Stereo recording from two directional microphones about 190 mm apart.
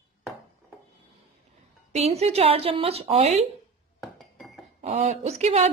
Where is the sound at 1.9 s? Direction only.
35° right (ahead or behind).